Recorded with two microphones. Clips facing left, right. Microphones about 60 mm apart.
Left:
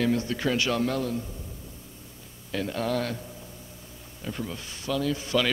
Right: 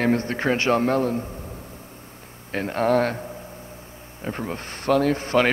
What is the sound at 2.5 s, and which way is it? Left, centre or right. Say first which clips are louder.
A man's voice: right 7 dB; right.